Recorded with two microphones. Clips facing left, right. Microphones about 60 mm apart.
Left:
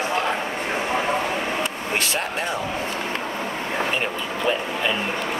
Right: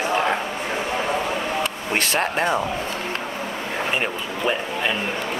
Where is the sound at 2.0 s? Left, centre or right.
Right.